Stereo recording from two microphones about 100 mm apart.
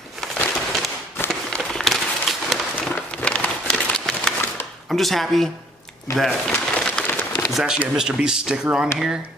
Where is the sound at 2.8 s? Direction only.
10° left (ahead or behind).